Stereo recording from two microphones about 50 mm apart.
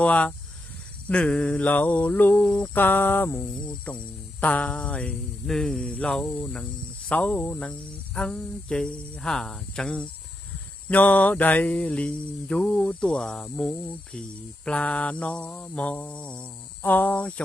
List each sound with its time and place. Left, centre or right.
0.0 s mantra: left
2.7 s mantra: left
3.6 s mantra: left
5.5 s cricket: centre
5.9 s mantra: left
7.1 s speech: left
8.3 s cricket: centre
10.9 s mantra: left
16.8 s mantra: left